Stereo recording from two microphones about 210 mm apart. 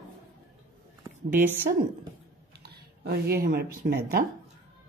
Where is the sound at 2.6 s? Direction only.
50° right (ahead or behind).